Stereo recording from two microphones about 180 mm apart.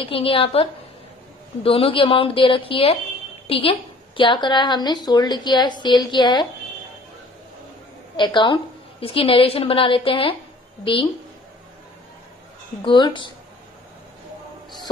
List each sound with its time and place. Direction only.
0.0 s a woman's voice: 30° left (ahead or behind)
8.2 s a woman's voice: 25° left (ahead or behind)
12.8 s a woman's voice: 25° left (ahead or behind)